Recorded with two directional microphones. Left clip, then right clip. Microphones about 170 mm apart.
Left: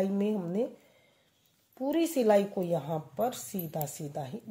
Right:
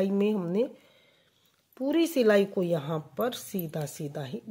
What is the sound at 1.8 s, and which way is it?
Speech, 35° right (ahead or behind).